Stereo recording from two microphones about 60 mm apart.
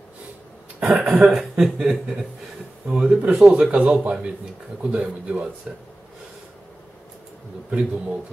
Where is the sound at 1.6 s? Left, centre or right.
Centre.